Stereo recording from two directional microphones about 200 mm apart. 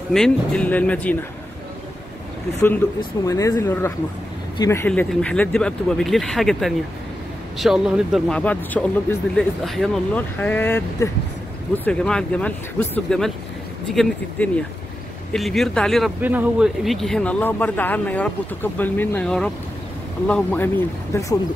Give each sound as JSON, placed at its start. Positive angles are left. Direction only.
{"t": 0.1, "sound": "speech", "side_deg": 5}
{"t": 3.0, "sound": "speech", "side_deg": 15}
{"t": 15.3, "sound": "speech", "side_deg": 0}
{"t": 16.2, "sound": "speech", "side_deg": -10}